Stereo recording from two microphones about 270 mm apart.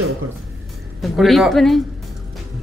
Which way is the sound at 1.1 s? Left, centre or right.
Centre.